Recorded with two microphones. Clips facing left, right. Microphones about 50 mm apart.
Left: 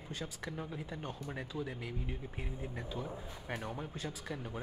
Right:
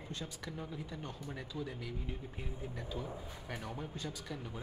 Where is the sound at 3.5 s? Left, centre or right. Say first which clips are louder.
Left 2 dB; centre.